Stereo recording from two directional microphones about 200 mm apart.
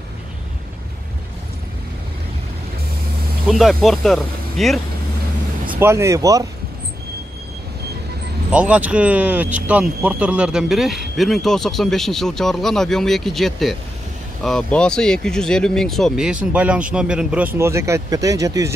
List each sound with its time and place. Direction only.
3.4 s speech: centre (ahead or behind)
5.7 s speech: 10° right (ahead or behind)
8.5 s speech: 5° right (ahead or behind)